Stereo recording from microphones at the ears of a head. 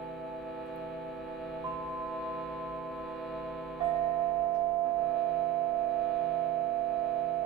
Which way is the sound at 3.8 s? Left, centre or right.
Right.